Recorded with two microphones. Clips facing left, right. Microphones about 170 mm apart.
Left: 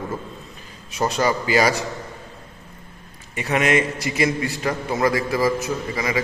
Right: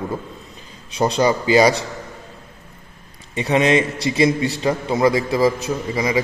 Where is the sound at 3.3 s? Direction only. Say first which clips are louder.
Right 3 dB; 25° right (ahead or behind).